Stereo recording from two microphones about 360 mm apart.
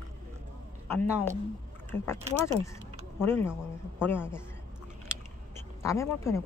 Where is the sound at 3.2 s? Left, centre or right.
Centre.